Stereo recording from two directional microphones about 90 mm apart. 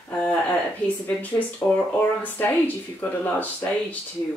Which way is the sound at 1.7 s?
20° left (ahead or behind).